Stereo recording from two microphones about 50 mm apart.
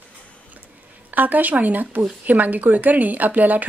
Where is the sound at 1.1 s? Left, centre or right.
Right.